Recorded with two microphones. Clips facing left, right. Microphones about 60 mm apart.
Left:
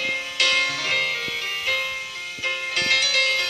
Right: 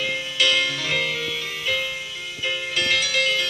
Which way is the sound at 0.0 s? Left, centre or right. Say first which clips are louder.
Right 1 dB; left.